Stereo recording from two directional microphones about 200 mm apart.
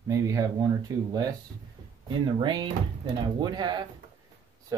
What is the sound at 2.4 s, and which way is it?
Speech, 25° right (ahead or behind).